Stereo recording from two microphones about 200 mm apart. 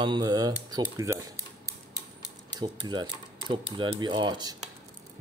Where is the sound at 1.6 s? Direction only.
15° right (ahead or behind).